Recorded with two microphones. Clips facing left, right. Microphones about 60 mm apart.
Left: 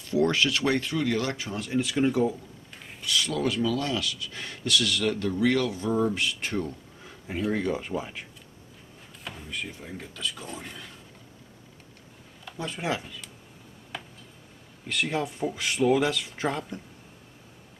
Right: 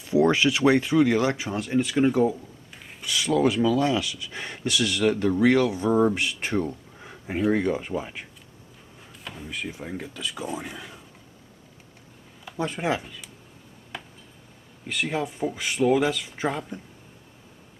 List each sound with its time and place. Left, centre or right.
0.0 s speech: centre
1.9 s a sound: centre
3.0 s speech: centre
7.7 s speech: centre
12.7 s speech: centre
13.9 s a sound: centre
14.9 s speech: centre